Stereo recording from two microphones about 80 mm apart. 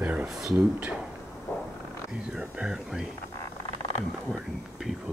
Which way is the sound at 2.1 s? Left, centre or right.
Centre.